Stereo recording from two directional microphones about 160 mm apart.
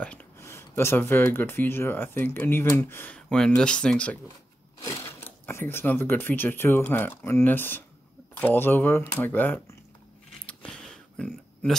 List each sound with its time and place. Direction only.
0.0 s speech: 10° left (ahead or behind)
5.5 s speech: 15° left (ahead or behind)
10.4 s a sound: 5° left (ahead or behind)